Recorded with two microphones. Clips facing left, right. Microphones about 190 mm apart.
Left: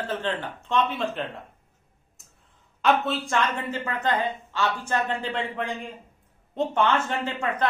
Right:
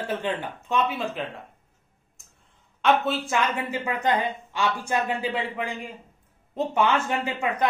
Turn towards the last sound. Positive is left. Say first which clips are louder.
# right 1 dB
turn(degrees=-10)  # may be behind; listen again after turning